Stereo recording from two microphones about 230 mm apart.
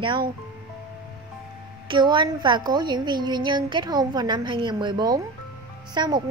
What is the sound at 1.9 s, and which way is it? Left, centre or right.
A woman's voice, centre.